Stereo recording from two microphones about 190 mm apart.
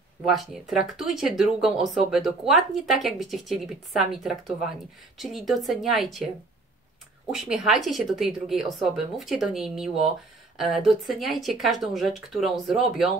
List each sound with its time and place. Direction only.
0.3 s speech: centre (ahead or behind)
7.2 s speech: centre (ahead or behind)